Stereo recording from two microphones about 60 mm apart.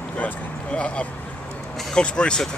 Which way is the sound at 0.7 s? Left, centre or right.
Centre.